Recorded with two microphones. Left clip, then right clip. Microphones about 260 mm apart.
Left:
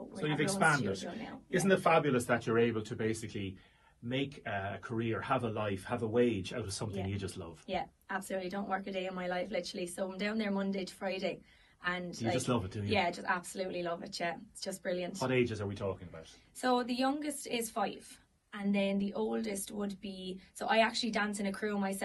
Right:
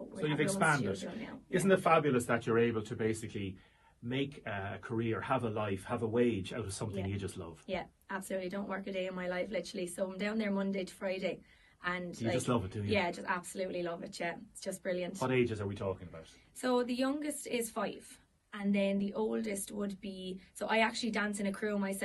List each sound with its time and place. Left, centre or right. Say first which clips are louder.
0.2 s speech: left 1 dB; right
7.6 s a woman's voice: left 3 dB; centre
12.4 s speech: right 3 dB; right
12.8 s a woman's voice: left 3 dB; centre
15.2 s speech: even; right
16.6 s a woman's voice: left 1 dB; centre